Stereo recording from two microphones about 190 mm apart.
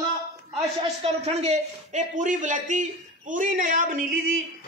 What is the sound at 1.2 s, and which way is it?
A man's voice, 35° right (ahead or behind).